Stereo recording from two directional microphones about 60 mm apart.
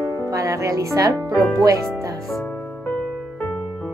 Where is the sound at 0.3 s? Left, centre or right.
Right.